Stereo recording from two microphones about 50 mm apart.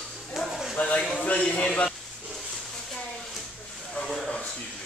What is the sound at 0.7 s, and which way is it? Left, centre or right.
A man's voice, left.